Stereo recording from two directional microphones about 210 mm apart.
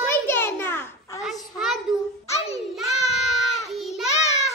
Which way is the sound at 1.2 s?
Centre (ahead or behind).